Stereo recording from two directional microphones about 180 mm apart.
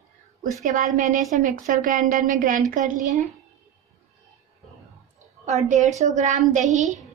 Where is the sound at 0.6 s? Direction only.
45° right (ahead or behind).